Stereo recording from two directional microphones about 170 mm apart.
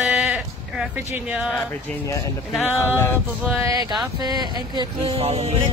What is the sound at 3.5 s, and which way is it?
Music, 15° right (ahead or behind).